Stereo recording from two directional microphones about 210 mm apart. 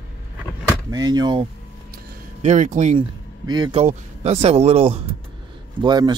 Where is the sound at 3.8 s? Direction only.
30° right (ahead or behind).